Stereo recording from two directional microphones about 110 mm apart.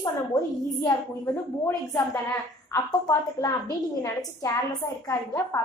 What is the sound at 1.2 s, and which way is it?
A woman's voice, 20° left (ahead or behind).